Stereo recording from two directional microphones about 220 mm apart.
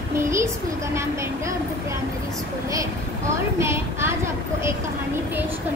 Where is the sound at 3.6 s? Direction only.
10° right (ahead or behind).